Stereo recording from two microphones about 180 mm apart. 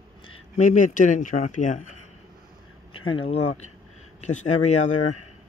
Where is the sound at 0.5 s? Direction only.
45° left (ahead or behind).